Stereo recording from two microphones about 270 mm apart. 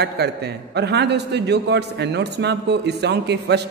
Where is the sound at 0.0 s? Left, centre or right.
Right.